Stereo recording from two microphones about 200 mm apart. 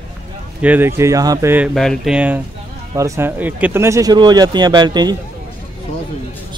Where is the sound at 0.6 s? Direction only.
10° right (ahead or behind).